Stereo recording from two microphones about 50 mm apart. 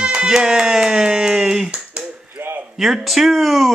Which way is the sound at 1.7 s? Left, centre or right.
Centre.